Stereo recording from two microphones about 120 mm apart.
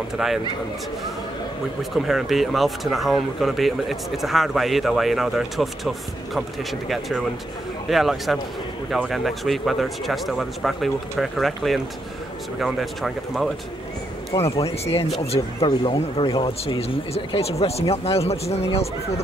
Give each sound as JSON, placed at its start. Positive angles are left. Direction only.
{"t": 0.2, "sound": "speech", "side_deg": -5}
{"t": 1.8, "sound": "speech", "side_deg": 0}
{"t": 14.3, "sound": "speech", "side_deg": 55}